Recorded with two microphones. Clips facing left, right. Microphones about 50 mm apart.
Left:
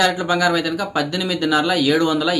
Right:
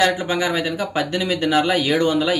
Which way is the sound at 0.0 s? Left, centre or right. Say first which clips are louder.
Left 2 dB; right.